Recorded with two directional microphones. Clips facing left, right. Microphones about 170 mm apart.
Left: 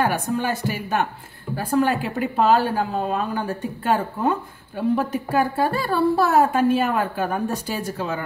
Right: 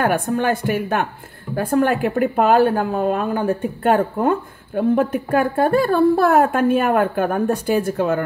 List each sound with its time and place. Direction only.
0.0 s a woman's voice: 55° right (ahead or behind)